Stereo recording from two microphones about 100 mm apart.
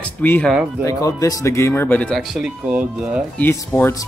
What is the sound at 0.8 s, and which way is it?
Speech, 35° left (ahead or behind).